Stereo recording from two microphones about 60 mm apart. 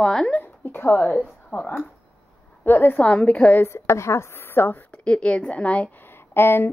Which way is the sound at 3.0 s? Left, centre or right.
Left.